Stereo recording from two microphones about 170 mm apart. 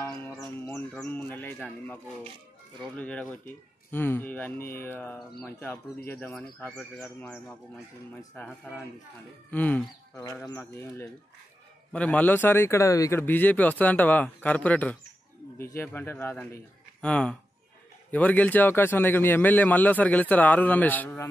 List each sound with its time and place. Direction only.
0.0 s a sound: 10° left (ahead or behind)
0.6 s bird: 10° left (ahead or behind)
0.9 s a man's voice: 10° left (ahead or behind)
8.5 s speech: 5° right (ahead or behind)
9.5 s a man's voice: 10° left (ahead or behind)